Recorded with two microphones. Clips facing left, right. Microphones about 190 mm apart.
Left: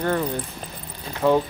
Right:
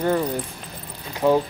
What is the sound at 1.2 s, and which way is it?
Speech, 10° right (ahead or behind).